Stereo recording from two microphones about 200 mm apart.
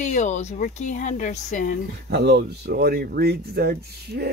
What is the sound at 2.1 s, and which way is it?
Speech, 55° right (ahead or behind).